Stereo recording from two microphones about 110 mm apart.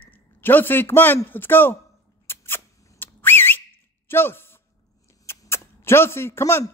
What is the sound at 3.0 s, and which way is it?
Whistle, 20° left (ahead or behind).